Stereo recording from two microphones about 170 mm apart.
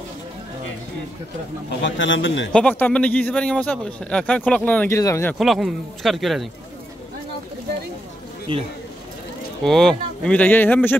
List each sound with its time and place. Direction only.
1.8 s a man's voice: 90° left
2.5 s a man's voice: 10° left (ahead or behind)
5.4 s speech: centre (ahead or behind)
9.6 s a man's voice: centre (ahead or behind)